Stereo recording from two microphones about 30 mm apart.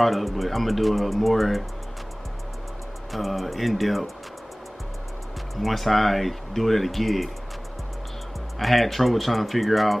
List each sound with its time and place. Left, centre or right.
0.0 s speech: centre
3.1 s speech: centre
5.6 s speech: centre
8.5 s speech: centre